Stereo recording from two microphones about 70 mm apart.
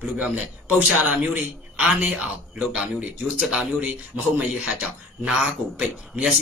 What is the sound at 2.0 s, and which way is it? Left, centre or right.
Speech, right.